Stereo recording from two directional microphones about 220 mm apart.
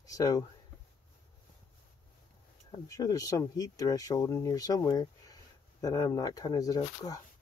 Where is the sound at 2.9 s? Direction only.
15° left (ahead or behind).